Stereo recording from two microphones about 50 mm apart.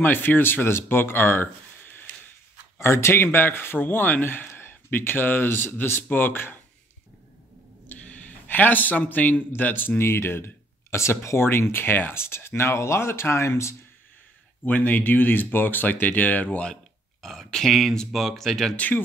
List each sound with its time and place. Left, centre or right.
0.0 s speech: left
2.8 s speech: left
7.9 s a sound: left
9.6 s speech: left
14.7 s speech: left
16.4 s speech: left
17.2 s speech: centre
18.8 s speech: left